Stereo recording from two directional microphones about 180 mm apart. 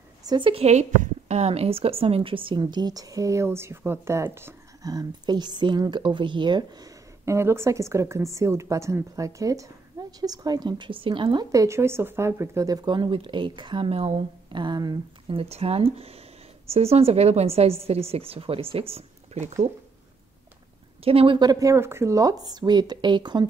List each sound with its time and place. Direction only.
0.2 s a woman's voice: 25° right (ahead or behind)
21.0 s speech: 30° right (ahead or behind)